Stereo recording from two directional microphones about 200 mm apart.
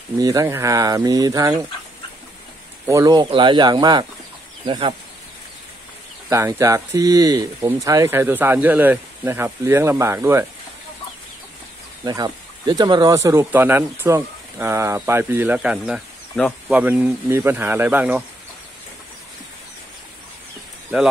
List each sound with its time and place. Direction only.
0.2 s speech: 15° right (ahead or behind)
2.9 s speech: 20° right (ahead or behind)
6.2 s speech: 15° right (ahead or behind)
12.0 s speech: 20° right (ahead or behind)